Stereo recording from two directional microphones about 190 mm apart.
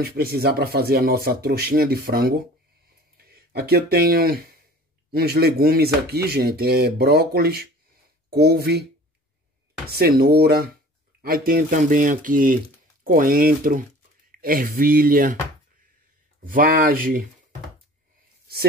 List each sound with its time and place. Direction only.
0.0 s speech: 55° right (ahead or behind)
2.9 s a sound: 55° right (ahead or behind)
5.1 s speech: 55° right (ahead or behind)
9.8 s speech: 55° right (ahead or behind)
16.4 s speech: 45° right (ahead or behind)